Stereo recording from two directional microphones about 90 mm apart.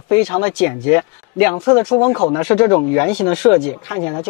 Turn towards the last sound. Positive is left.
turn(degrees=25)  # may be behind; listen again after turning